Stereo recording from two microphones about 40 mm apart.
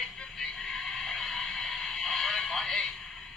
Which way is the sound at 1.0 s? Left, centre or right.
Centre.